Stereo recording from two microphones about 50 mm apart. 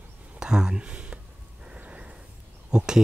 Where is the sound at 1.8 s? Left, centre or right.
Right.